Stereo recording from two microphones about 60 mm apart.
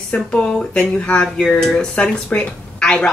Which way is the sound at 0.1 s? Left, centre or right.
Centre.